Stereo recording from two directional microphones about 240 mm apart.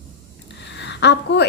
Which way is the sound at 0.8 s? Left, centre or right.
Left.